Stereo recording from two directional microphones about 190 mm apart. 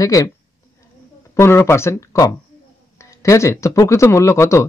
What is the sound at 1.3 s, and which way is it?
Speech, 15° left (ahead or behind).